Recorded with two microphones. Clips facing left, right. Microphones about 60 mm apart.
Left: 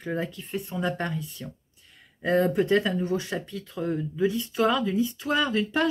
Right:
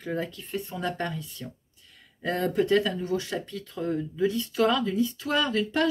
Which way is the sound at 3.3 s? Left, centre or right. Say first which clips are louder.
Even; centre.